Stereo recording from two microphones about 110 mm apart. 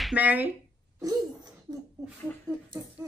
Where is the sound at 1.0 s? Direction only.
35° right (ahead or behind).